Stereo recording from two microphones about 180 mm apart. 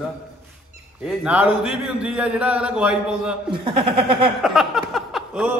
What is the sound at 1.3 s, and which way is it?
A man's voice, 5° right (ahead or behind).